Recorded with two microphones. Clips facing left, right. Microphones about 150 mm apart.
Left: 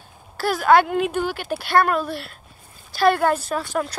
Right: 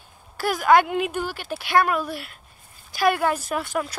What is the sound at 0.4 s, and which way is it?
Speech, 15° right (ahead or behind).